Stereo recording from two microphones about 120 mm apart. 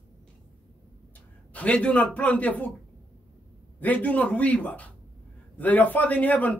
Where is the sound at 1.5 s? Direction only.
10° left (ahead or behind).